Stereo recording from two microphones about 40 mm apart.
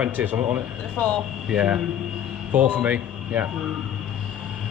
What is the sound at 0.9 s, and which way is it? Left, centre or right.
Speech, left.